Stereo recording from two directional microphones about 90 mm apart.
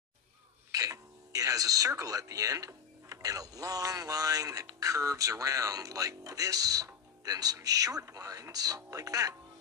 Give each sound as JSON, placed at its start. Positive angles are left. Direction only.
{"t": 0.7, "sound": "speech", "side_deg": -40}